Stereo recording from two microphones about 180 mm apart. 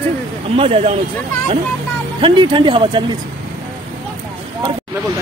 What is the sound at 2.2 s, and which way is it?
Speech, 25° right (ahead or behind).